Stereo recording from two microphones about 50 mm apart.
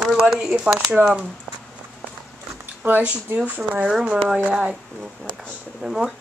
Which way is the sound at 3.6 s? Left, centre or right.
Centre.